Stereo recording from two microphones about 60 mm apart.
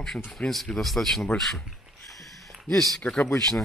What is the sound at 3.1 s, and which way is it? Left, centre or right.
Speech, centre.